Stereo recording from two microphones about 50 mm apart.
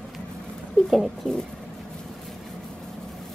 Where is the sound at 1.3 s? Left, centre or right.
Centre.